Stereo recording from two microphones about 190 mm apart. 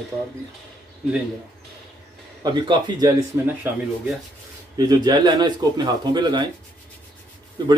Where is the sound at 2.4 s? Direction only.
20° right (ahead or behind).